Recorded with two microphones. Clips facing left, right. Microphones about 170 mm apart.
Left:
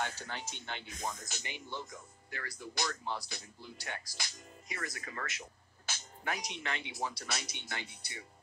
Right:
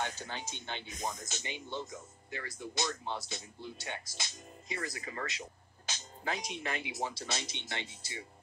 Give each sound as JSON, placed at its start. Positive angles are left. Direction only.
{"t": 0.0, "sound": "speech", "side_deg": -20}